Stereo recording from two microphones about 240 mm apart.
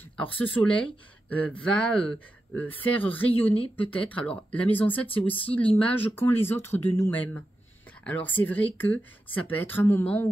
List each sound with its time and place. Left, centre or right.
0.2 s speech: centre
3.5 s speech: left
3.8 s speech: centre